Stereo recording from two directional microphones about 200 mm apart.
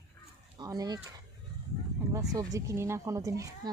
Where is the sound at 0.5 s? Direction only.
20° right (ahead or behind).